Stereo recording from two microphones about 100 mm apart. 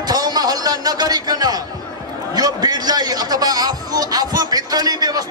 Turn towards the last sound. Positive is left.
turn(degrees=-40)  # may be behind; listen again after turning